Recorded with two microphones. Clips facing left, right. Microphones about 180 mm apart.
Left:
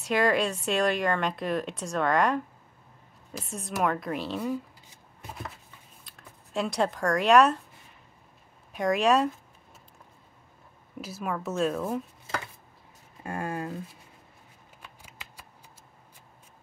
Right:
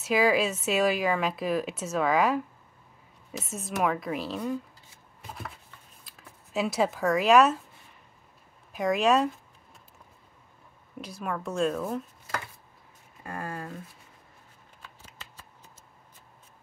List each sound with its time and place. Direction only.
0.0 s a woman's voice: 5° right (ahead or behind)
6.0 s speech: centre (ahead or behind)
8.7 s a woman's voice: centre (ahead or behind)
11.0 s a woman's voice: 5° left (ahead or behind)
13.2 s speech: 20° left (ahead or behind)
14.8 s a sound: 15° left (ahead or behind)